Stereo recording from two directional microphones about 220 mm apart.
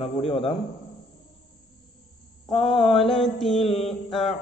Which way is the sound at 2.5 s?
25° left (ahead or behind).